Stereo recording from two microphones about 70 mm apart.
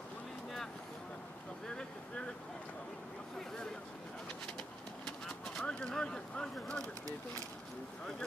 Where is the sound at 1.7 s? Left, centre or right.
Centre.